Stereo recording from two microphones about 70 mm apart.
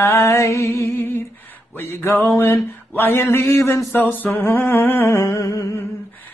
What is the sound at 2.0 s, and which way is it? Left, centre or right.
Mantra, left.